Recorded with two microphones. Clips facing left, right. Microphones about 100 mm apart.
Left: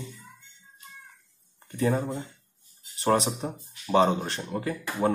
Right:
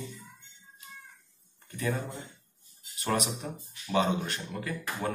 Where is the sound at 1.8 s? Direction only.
35° left (ahead or behind).